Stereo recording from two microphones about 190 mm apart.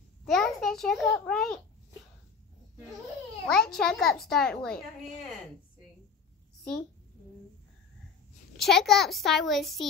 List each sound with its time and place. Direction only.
0.3 s a child's voice: centre (ahead or behind)
3.4 s a child's voice: centre (ahead or behind)
8.5 s a child's voice: centre (ahead or behind)